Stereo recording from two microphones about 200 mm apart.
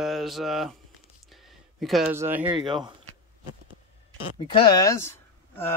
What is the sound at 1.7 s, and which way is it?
Speech, centre (ahead or behind).